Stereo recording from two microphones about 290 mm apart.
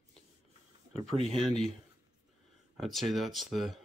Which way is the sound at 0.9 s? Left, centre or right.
Centre.